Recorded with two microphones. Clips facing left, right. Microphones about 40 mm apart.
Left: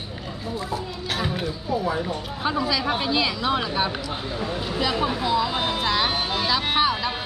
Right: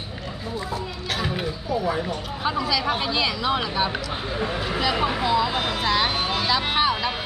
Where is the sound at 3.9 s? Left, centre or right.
Right.